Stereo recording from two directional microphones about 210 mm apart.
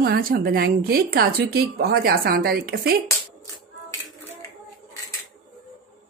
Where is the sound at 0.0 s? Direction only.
45° right (ahead or behind).